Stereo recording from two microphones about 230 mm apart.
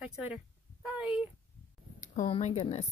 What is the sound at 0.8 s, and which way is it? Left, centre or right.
Speech, centre.